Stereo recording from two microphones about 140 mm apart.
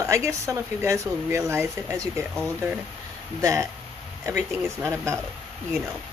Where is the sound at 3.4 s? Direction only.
20° right (ahead or behind).